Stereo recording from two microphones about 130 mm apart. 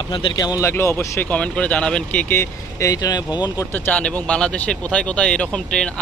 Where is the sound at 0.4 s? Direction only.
25° left (ahead or behind).